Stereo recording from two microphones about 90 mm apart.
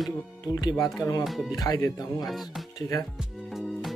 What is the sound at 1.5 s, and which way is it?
Speech, 45° left (ahead or behind).